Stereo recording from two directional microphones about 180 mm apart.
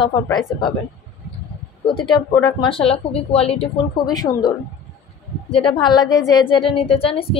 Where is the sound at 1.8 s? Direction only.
25° left (ahead or behind).